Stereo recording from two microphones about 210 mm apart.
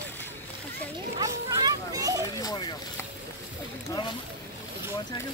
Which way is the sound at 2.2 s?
20° left (ahead or behind).